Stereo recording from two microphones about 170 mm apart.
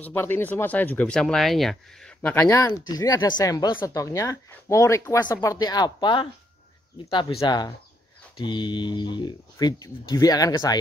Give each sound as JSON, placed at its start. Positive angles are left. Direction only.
{"t": 0.0, "sound": "speech", "side_deg": 15}